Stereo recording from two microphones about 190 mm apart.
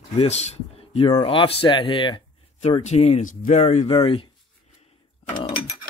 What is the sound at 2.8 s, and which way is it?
Speech, 35° left (ahead or behind).